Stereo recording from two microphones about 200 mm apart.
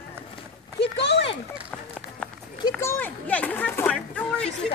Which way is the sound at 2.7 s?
10° left (ahead or behind).